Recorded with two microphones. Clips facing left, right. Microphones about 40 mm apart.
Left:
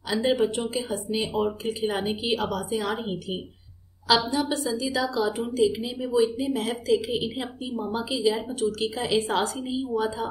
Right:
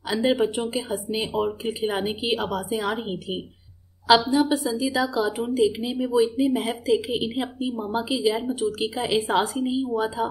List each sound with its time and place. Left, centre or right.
0.1 s a woman's voice: centre
1.3 s speech: right
1.7 s a woman's voice: centre
7.7 s a woman's voice: right